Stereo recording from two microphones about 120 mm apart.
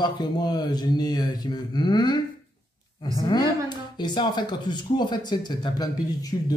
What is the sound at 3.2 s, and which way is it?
Speech, 35° left (ahead or behind).